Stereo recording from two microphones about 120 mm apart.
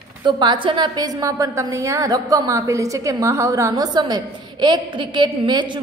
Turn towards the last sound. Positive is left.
turn(degrees=-40)  # may be behind; listen again after turning